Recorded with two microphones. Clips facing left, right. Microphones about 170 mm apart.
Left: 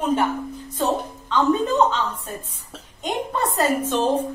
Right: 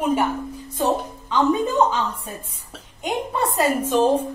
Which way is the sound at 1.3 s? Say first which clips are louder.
Even; 10° right (ahead or behind).